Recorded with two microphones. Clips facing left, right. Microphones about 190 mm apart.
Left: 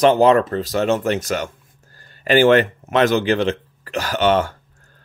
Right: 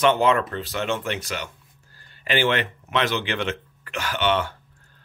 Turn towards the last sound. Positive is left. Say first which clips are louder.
# left 6 dB
turn(degrees=40)  # may be behind; listen again after turning